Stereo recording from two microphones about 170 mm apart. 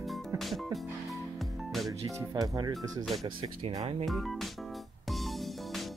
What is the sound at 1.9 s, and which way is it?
Speech, 20° right (ahead or behind).